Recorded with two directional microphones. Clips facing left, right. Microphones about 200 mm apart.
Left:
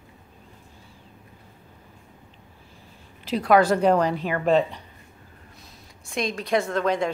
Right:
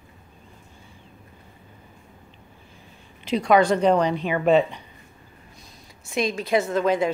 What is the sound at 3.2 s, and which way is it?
A woman's voice, 5° left (ahead or behind).